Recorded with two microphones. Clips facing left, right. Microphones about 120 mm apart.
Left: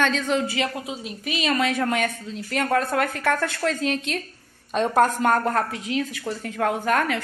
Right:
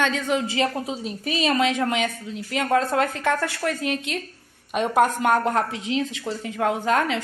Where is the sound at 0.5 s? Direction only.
35° right (ahead or behind).